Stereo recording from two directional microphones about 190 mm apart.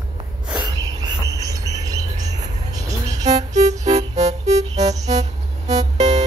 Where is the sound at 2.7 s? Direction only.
20° right (ahead or behind).